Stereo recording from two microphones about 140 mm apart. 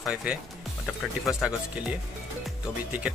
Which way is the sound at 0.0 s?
10° right (ahead or behind).